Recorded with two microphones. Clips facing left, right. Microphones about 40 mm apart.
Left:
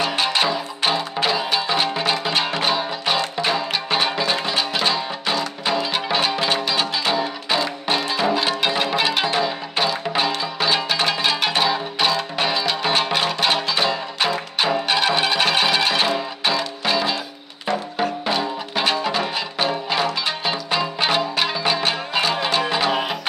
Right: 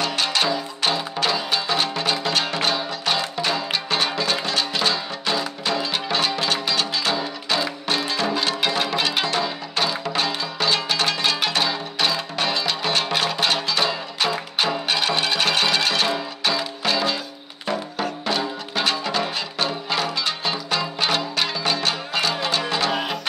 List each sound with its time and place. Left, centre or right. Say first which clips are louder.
0.0 s music: left 2 dB; centre